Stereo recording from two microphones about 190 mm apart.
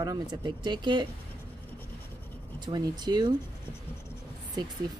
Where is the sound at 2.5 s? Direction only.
20° right (ahead or behind).